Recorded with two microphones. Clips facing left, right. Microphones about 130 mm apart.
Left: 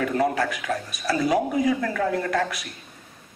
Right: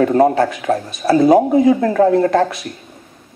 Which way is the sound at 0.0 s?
30° right (ahead or behind).